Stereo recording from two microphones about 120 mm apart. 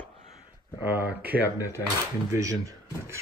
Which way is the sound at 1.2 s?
15° right (ahead or behind).